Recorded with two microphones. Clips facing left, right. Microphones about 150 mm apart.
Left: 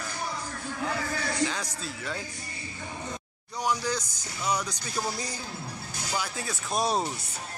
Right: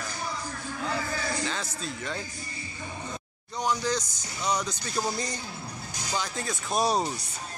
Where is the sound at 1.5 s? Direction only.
15° left (ahead or behind).